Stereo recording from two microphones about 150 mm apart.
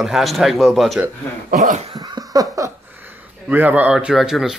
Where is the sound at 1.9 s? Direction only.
25° right (ahead or behind).